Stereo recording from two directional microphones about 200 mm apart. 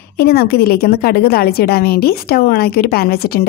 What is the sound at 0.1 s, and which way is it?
A woman's voice, 50° left (ahead or behind).